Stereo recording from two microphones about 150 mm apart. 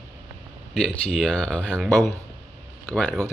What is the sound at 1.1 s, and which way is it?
Speech, 5° left (ahead or behind).